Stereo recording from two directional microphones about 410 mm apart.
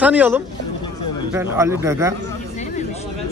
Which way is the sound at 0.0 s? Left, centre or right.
Centre.